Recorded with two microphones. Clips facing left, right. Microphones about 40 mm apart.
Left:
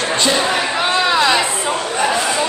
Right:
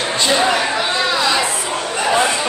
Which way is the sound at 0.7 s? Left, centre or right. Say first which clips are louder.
Left 3 dB; centre.